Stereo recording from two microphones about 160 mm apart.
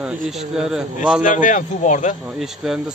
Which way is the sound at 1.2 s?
55° left (ahead or behind).